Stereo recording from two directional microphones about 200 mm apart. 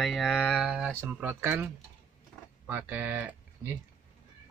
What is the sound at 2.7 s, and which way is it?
Speech, 10° right (ahead or behind).